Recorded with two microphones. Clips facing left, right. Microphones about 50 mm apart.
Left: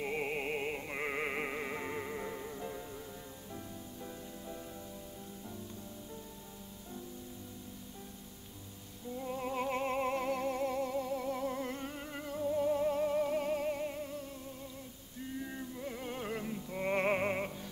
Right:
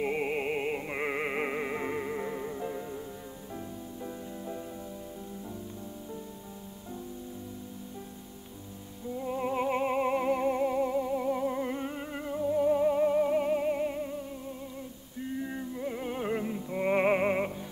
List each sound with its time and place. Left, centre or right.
0.0 s music: centre
9.1 s music: centre
15.4 s music: centre